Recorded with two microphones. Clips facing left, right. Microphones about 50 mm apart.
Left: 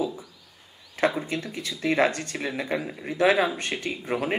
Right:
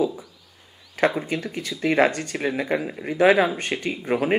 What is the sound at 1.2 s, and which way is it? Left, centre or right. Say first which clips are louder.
Speech: right 3 dB; right.